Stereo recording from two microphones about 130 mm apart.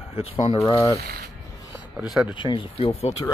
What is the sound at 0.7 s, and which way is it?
Speech, 25° left (ahead or behind).